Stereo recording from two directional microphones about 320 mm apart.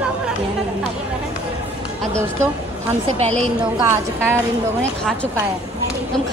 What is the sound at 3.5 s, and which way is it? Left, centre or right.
Speech, centre.